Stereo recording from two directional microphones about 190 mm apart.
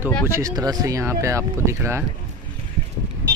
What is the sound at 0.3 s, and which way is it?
Speech, 20° right (ahead or behind).